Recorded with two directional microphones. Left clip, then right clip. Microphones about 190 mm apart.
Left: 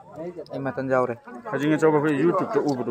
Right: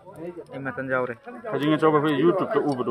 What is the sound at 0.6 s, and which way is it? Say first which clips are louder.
Speech: left 3 dB; 55° left (ahead or behind).